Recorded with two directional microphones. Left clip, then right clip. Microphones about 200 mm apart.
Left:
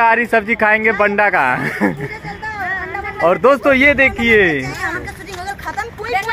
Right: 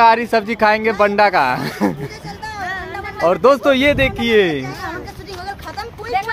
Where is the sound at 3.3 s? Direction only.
10° left (ahead or behind).